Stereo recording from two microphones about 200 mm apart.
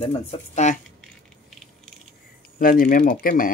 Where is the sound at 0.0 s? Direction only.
30° left (ahead or behind).